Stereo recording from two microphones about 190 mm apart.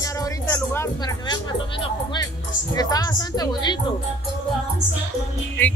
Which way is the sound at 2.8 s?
20° left (ahead or behind).